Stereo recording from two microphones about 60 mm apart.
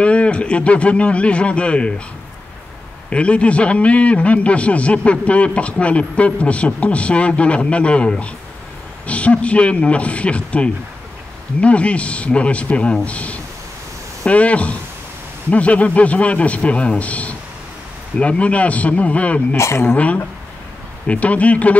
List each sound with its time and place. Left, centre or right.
0.0 s a man's voice: centre
3.1 s a man's voice: centre
19.5 s speech: left
21.1 s a man's voice: left